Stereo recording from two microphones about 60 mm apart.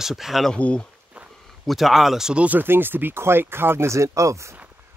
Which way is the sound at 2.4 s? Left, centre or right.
Right.